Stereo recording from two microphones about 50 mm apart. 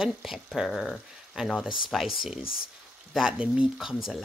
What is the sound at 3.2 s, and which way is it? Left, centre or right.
Speech, centre.